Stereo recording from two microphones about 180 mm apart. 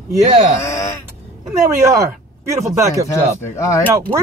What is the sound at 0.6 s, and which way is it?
Speech, 15° left (ahead or behind).